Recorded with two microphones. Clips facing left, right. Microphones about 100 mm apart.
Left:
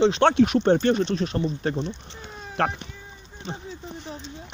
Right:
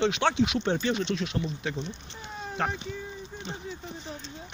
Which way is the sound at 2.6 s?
65° left (ahead or behind).